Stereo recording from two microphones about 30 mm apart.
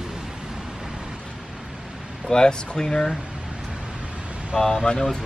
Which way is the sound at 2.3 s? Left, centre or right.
Left.